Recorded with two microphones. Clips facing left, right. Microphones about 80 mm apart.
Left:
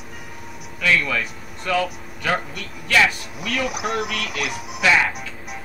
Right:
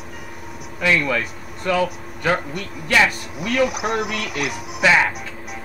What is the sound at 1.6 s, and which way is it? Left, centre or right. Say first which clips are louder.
Speech: right 2 dB; centre.